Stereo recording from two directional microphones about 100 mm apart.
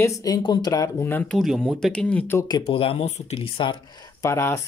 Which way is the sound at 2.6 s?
70° left (ahead or behind).